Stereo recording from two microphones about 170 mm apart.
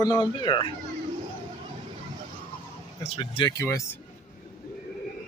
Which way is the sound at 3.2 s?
25° left (ahead or behind).